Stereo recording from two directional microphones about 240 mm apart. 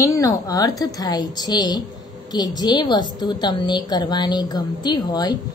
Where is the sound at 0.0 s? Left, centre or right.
Centre.